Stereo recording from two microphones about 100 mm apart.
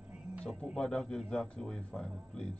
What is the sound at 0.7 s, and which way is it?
Speech, 5° left (ahead or behind).